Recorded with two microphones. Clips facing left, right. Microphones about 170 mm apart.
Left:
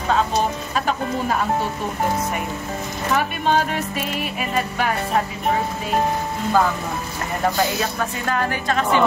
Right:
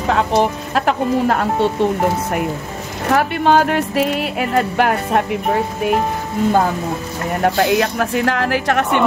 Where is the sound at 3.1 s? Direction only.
75° right (ahead or behind).